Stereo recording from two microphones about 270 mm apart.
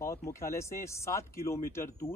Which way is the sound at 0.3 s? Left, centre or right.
Centre.